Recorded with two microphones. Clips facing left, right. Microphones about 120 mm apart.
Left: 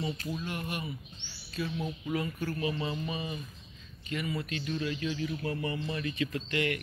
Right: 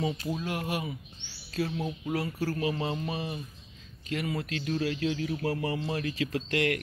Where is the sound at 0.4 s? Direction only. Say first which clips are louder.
Right 4 dB; 90° right.